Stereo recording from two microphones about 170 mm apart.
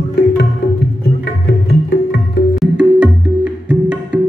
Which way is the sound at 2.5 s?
5° right (ahead or behind).